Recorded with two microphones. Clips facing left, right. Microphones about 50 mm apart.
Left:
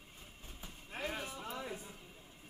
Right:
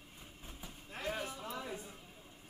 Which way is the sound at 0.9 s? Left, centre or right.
Centre.